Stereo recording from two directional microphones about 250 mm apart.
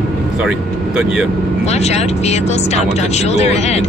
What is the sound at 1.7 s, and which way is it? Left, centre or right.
Speech, left.